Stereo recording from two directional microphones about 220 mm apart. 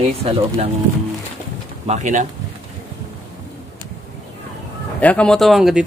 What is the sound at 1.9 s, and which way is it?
Speech, 35° right (ahead or behind).